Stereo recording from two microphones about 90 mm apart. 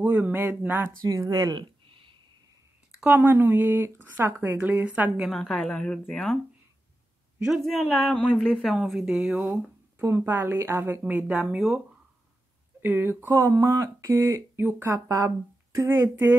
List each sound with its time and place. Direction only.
0.0 s speech: 15° right (ahead or behind)
1.0 s speech: 40° right (ahead or behind)
1.9 s a sound: 70° right (ahead or behind)
3.1 s speech: 25° right (ahead or behind)
5.3 s a man's voice: 5° left (ahead or behind)
8.1 s a woman's voice: 15° left (ahead or behind)
8.6 s speech: centre (ahead or behind)
9.5 s speech: 25° right (ahead or behind)
12.8 s speech: 20° right (ahead or behind)
15.0 s speech: 35° right (ahead or behind)